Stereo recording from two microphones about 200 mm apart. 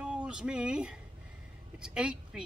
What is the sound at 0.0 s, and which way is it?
Speech, 5° right (ahead or behind).